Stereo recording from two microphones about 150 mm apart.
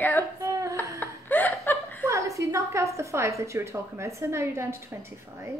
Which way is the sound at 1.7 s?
10° left (ahead or behind).